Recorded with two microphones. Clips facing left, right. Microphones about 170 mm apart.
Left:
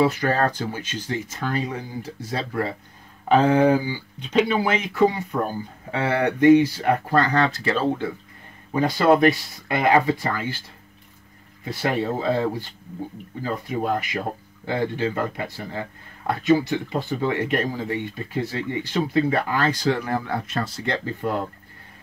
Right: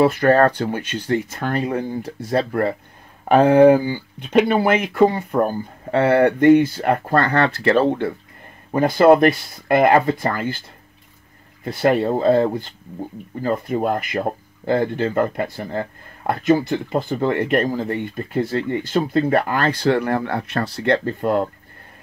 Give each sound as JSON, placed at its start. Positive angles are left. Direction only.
{"t": 0.0, "sound": "speech", "side_deg": -55}
{"t": 11.6, "sound": "speech", "side_deg": -55}